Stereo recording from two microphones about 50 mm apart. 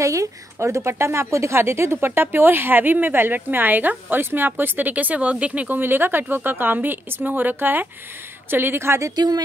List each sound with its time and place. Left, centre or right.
0.0 s a woman's voice: right
1.6 s speech: right
5.8 s a woman's voice: right